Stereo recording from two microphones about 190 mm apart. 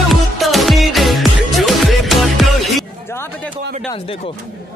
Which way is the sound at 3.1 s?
15° left (ahead or behind).